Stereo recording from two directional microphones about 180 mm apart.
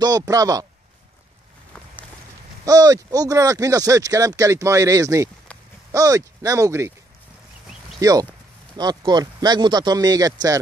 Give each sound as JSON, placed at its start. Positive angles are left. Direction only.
{"t": 0.0, "sound": "speech", "side_deg": -20}
{"t": 2.6, "sound": "speech", "side_deg": -20}
{"t": 8.0, "sound": "speech", "side_deg": -20}